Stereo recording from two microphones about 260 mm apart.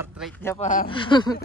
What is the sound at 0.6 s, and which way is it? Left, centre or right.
Speech, left.